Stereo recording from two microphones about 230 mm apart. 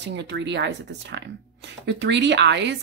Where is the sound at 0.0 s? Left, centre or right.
Right.